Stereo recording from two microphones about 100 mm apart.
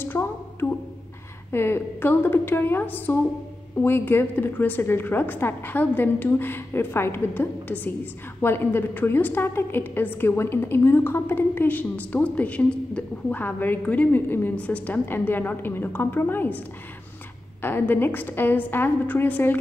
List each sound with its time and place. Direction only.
0.0 s a sound: 20° left (ahead or behind)
1.5 s a woman's voice: 20° left (ahead or behind)
17.6 s a woman's voice: 20° left (ahead or behind)